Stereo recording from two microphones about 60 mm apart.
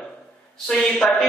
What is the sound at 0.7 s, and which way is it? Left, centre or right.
Speech, centre.